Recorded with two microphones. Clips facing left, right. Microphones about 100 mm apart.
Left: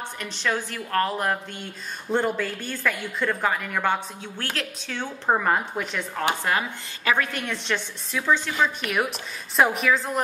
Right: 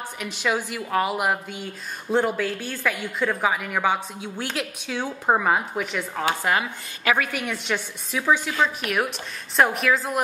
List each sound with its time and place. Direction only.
0.2 s a woman's voice: 10° right (ahead or behind)
8.5 s a woman's voice: centre (ahead or behind)